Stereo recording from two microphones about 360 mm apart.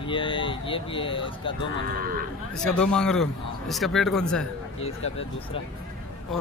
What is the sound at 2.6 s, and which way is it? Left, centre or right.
A man's voice, centre.